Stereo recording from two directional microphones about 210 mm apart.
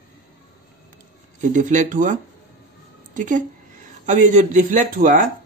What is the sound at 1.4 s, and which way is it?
Speech, 35° right (ahead or behind).